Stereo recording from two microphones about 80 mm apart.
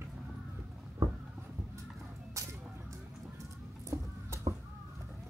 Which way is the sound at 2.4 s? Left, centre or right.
Right.